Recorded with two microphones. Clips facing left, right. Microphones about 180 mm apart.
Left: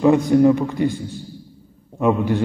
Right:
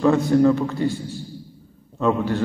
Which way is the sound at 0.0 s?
15° left (ahead or behind).